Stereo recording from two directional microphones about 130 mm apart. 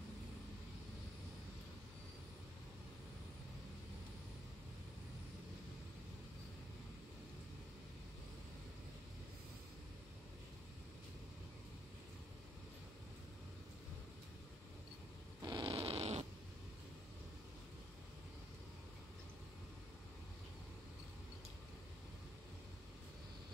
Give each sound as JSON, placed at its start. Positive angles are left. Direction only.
{"t": 15.4, "sound": "cat", "side_deg": -40}